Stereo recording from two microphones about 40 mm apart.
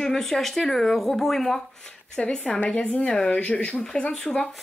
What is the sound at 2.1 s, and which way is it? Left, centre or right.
Speech, centre.